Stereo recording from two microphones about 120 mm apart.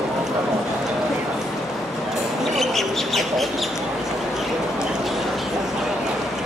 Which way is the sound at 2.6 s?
Centre (ahead or behind).